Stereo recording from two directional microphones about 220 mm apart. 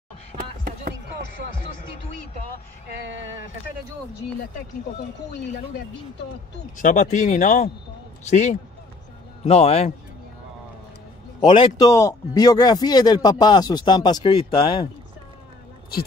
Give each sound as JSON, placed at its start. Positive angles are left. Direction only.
{"t": 0.3, "sound": "a sound", "side_deg": -35}
{"t": 6.8, "sound": "speech", "side_deg": 35}
{"t": 11.4, "sound": "speech", "side_deg": 15}